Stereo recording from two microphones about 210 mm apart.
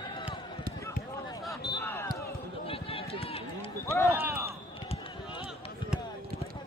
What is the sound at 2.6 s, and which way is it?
Run, 25° left (ahead or behind).